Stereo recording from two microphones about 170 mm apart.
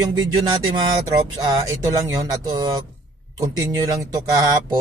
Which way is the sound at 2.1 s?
20° right (ahead or behind).